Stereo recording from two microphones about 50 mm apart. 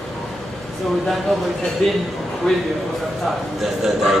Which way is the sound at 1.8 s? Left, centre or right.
Centre.